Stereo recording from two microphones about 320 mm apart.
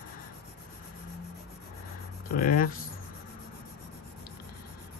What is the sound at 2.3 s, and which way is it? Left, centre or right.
Speech, left.